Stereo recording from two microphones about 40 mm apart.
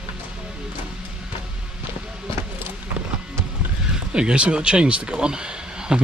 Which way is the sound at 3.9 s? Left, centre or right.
Right.